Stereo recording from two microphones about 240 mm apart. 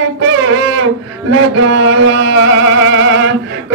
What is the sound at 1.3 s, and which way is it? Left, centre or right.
Music, right.